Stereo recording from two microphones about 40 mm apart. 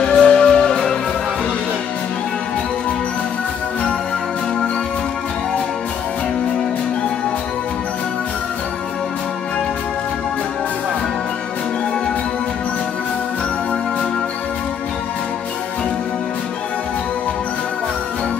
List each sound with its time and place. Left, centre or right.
0.0 s music: left